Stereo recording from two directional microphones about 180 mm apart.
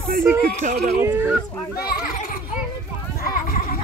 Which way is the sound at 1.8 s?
55° left (ahead or behind).